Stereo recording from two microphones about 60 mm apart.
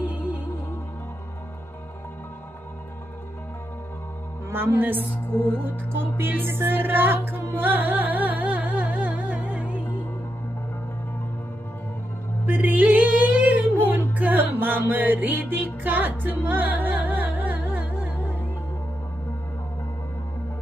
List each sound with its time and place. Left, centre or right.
4.5 s speech: right
5.3 s music: left
5.7 s music: right
12.4 s music: right